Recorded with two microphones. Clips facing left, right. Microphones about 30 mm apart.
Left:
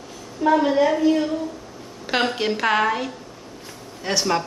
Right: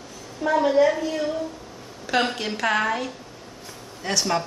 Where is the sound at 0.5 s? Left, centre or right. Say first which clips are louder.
Left 1 dB; centre.